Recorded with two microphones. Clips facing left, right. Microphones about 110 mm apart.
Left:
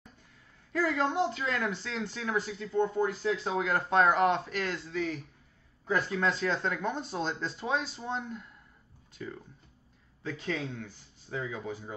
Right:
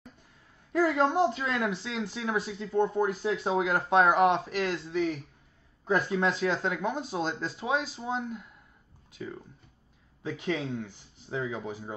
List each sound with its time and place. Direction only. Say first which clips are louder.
0.7 s speech: right 4 dB; 15° right (ahead or behind)
1.8 s speech: right 2 dB; 5° right (ahead or behind)